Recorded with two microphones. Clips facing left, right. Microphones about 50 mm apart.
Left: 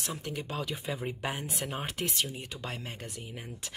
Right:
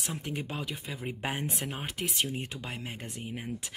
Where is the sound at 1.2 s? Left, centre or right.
Right.